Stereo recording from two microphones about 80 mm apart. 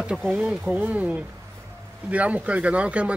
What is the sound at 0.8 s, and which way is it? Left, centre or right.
Speech, centre.